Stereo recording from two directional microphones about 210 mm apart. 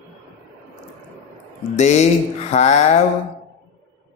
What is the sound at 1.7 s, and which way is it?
Mantra, 35° left (ahead or behind).